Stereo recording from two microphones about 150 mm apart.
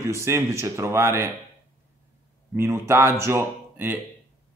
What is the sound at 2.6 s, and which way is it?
A man's voice, 15° right (ahead or behind).